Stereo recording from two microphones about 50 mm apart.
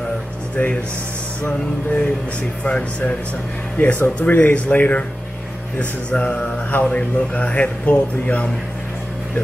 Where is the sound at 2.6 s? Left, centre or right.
Left.